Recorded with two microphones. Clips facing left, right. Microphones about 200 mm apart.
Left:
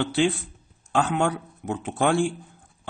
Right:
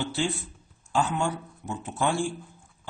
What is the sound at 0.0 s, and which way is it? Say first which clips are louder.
A man's voice: left 6 dB; 65° left (ahead or behind).